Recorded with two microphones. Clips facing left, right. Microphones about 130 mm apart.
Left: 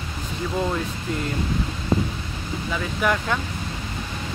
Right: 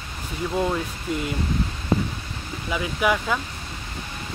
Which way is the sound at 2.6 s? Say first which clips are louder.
Right 1 dB; 10° right (ahead or behind).